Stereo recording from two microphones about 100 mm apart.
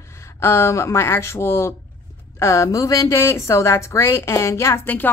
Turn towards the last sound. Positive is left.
turn(degrees=20)  # may be behind; listen again after turning